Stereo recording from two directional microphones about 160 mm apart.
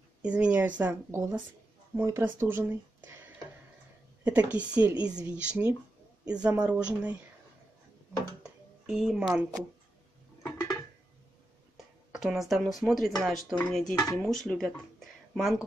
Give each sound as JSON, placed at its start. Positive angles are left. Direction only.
{"t": 0.2, "sound": "speech", "side_deg": -5}
{"t": 4.2, "sound": "speech", "side_deg": -10}
{"t": 8.8, "sound": "a woman's voice", "side_deg": 0}
{"t": 10.4, "sound": "a sound", "side_deg": 20}
{"t": 11.7, "sound": "speech", "side_deg": 0}